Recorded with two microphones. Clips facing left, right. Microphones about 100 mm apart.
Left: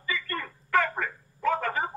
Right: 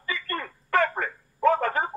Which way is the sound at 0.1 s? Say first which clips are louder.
Right 1 dB; 55° right (ahead or behind).